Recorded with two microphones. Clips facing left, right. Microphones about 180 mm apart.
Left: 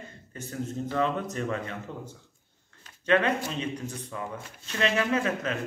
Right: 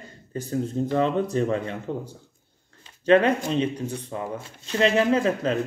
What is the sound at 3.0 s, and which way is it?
Speech, 35° right (ahead or behind).